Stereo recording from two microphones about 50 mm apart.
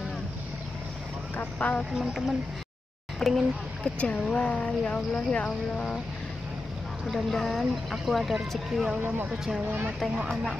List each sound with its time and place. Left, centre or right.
1.3 s speech: left
2.0 s speech: centre
3.2 s speech: centre
3.8 s speech: left
7.1 s speech: centre